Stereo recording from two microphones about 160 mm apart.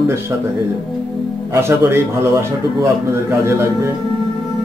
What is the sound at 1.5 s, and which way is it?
Speech, 15° right (ahead or behind).